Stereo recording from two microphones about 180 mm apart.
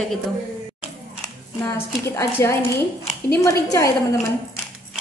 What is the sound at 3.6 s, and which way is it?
Speech, 20° left (ahead or behind).